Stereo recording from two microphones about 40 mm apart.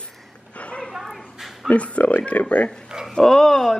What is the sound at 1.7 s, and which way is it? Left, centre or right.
Speech, left.